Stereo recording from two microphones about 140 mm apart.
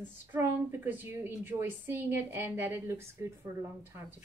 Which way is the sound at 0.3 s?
15° right (ahead or behind).